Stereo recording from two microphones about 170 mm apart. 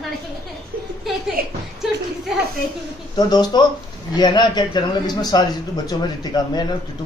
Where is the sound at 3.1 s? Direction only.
25° left (ahead or behind).